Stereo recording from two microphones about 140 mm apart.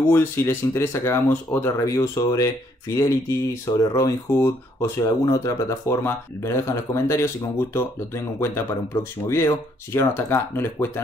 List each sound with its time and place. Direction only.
0.1 s speech: 15° left (ahead or behind)